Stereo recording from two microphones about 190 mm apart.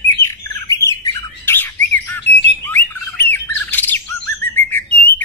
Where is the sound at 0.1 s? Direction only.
15° left (ahead or behind).